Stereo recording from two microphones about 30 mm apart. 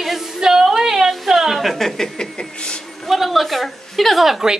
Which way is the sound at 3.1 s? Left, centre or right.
Centre.